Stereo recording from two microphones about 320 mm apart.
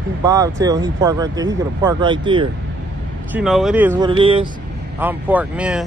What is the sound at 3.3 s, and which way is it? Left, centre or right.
Speech, centre.